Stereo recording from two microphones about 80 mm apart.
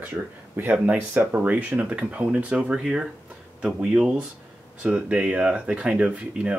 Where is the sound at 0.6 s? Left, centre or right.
Right.